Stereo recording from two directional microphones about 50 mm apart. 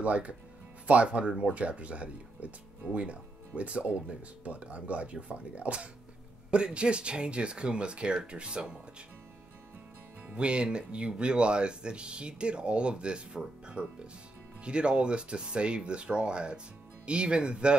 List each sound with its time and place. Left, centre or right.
0.0 s speech: right
10.3 s speech: right